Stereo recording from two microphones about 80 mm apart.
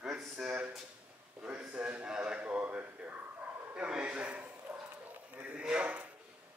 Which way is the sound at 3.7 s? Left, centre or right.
Centre.